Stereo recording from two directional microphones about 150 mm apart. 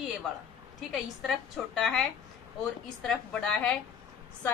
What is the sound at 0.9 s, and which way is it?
A woman's voice, centre (ahead or behind).